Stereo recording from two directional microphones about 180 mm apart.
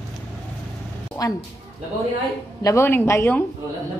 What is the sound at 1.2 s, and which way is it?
Speech, 20° left (ahead or behind).